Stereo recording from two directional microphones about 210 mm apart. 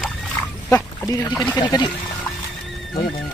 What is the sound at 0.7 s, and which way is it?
Speech, 15° left (ahead or behind).